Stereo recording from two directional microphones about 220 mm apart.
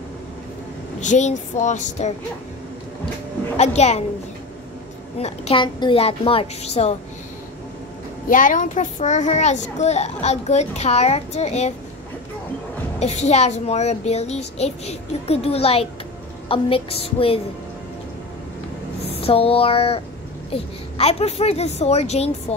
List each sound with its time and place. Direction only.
1.0 s a child's voice: 30° left (ahead or behind)
3.5 s a child's voice: 30° left (ahead or behind)
5.2 s a child's voice: 25° left (ahead or behind)
8.3 s a child's voice: 35° left (ahead or behind)
13.0 s a child's voice: 30° left (ahead or behind)
19.2 s a child's voice: 25° left (ahead or behind)